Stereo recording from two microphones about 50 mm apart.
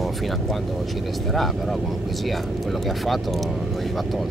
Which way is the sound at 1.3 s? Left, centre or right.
Centre.